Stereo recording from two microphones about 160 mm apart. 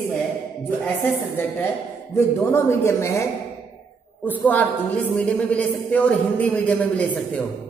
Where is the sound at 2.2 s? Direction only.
15° left (ahead or behind).